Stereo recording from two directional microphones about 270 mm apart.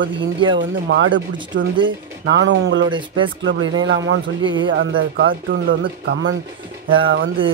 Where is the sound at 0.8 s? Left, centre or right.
Right.